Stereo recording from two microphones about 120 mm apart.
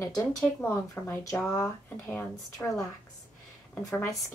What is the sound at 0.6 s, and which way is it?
Speech, 20° left (ahead or behind).